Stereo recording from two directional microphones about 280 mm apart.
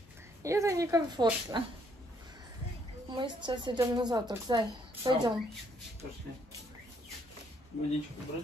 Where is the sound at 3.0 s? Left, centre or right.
Centre.